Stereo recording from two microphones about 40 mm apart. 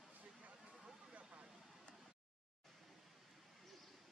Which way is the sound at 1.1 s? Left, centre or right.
Right.